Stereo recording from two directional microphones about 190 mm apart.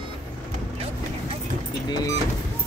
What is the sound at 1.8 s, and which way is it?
Vehicle, 20° left (ahead or behind).